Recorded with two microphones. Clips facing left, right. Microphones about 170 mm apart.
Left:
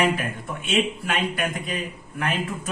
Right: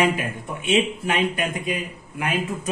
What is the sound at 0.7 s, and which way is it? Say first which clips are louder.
A man's voice: right 3 dB; 20° right (ahead or behind).